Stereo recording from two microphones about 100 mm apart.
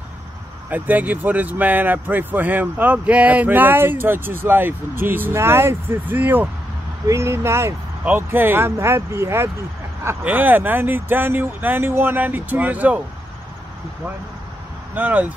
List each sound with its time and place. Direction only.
0.7 s speech: 15° right (ahead or behind)
15.0 s speech: 15° right (ahead or behind)